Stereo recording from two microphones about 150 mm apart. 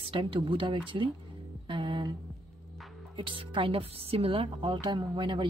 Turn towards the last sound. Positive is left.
turn(degrees=-30)  # may be behind; listen again after turning